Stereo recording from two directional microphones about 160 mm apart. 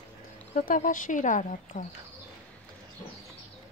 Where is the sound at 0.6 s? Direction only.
55° left (ahead or behind).